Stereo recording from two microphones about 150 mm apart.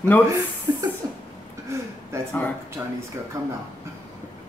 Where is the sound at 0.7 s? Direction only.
25° right (ahead or behind).